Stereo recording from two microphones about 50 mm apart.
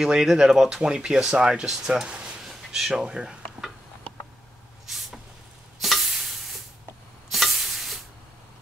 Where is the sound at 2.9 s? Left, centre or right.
Centre.